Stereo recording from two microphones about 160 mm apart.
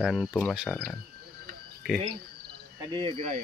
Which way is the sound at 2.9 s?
35° right (ahead or behind).